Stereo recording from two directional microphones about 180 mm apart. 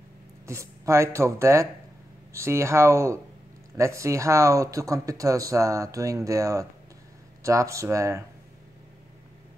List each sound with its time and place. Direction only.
0.5 s speech: 15° right (ahead or behind)